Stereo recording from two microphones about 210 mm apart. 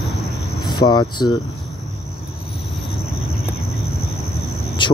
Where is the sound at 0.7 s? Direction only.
20° left (ahead or behind).